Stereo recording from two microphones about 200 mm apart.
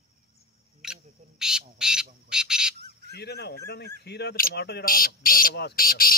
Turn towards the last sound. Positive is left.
turn(degrees=45)  # may be behind; listen again after turning